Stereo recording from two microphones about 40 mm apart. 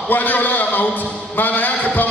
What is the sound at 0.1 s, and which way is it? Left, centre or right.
A man's voice, left.